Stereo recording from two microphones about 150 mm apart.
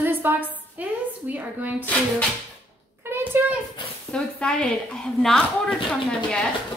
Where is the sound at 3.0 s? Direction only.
15° right (ahead or behind).